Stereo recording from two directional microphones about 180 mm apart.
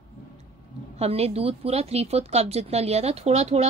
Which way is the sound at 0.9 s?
35° right (ahead or behind).